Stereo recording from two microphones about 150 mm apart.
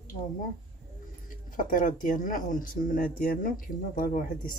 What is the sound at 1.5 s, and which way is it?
Speech, 65° left (ahead or behind).